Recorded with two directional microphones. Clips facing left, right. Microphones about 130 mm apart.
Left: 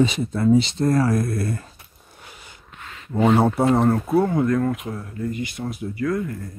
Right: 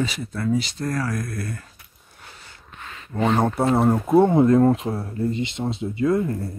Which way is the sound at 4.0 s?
25° right (ahead or behind).